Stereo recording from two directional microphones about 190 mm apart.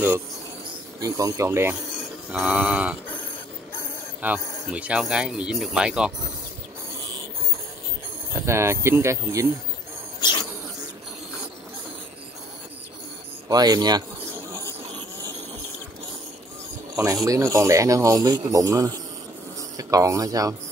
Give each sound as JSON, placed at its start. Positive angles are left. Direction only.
{"t": 1.0, "sound": "speech", "side_deg": -20}
{"t": 4.2, "sound": "speech", "side_deg": -10}
{"t": 8.5, "sound": "speech", "side_deg": -15}
{"t": 10.2, "sound": "cricket", "side_deg": 25}
{"t": 13.5, "sound": "speech", "side_deg": -20}
{"t": 16.9, "sound": "speech", "side_deg": -15}